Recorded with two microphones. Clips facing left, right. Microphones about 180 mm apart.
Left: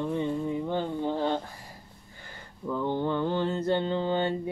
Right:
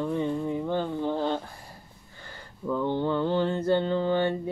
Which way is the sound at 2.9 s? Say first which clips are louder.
Right 1 dB; 15° left (ahead or behind).